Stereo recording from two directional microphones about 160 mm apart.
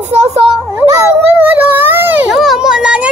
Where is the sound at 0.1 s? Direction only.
40° right (ahead or behind).